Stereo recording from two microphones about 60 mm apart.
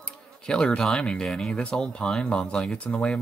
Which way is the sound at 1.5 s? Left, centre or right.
Centre.